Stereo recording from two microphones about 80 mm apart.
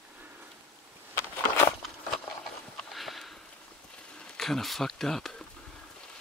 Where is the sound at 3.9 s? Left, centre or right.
Centre.